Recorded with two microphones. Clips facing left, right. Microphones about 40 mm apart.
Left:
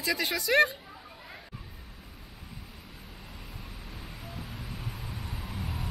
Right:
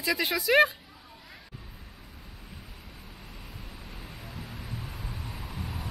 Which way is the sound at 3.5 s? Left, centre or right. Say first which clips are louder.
Even; centre.